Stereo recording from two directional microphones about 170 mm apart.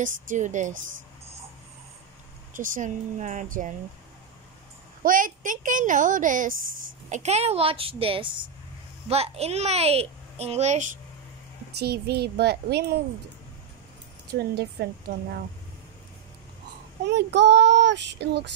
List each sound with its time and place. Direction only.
0.0 s a woman's voice: 50° right (ahead or behind)
2.5 s a woman's voice: 50° right (ahead or behind)
5.0 s a woman's voice: 55° right (ahead or behind)
7.1 s a child's voice: 40° right (ahead or behind)
11.7 s a child's voice: 70° right (ahead or behind)
14.5 s a child's voice: 70° right (ahead or behind)
17.0 s speech: 90° right